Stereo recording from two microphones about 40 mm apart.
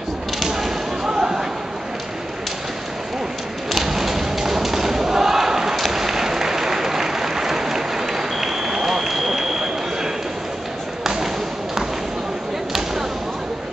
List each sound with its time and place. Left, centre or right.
0.4 s whip: centre
3.7 s thump: centre